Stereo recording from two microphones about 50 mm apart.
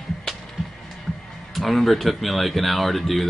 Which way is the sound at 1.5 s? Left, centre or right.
Centre.